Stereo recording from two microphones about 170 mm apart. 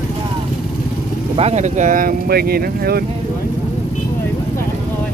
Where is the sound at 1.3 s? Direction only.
40° right (ahead or behind); by 3.0 s 65° right (ahead or behind).